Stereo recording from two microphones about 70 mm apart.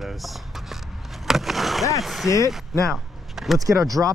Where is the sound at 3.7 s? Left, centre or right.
Right.